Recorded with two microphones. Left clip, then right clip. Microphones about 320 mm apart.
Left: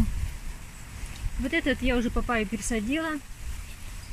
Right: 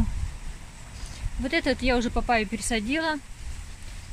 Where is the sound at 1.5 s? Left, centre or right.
Centre.